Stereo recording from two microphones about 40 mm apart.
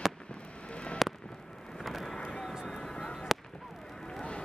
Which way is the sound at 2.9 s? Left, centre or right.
Centre.